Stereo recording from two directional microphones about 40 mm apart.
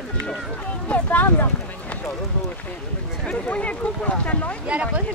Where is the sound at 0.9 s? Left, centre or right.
Left.